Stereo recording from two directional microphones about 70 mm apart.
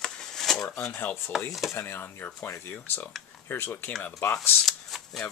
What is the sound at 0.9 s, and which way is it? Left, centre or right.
Speech, left.